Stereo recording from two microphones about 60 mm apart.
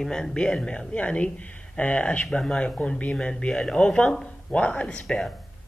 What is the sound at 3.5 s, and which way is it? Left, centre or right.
Speech, centre.